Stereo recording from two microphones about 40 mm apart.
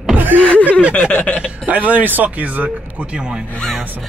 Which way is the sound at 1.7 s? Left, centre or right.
Right.